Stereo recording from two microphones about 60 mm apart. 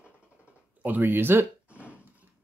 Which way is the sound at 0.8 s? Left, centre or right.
Right.